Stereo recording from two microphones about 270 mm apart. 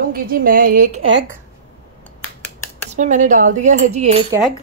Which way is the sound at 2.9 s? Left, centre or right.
Right.